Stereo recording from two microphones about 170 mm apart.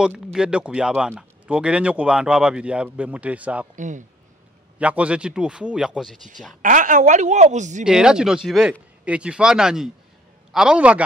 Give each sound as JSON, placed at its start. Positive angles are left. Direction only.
{"t": 0.0, "sound": "speech", "side_deg": -5}
{"t": 3.7, "sound": "a woman's voice", "side_deg": -50}
{"t": 4.7, "sound": "speech", "side_deg": -5}
{"t": 6.6, "sound": "a woman's voice", "side_deg": -50}
{"t": 7.8, "sound": "speech", "side_deg": -5}